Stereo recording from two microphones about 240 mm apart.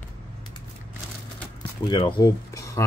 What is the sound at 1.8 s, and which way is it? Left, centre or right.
Speech, centre.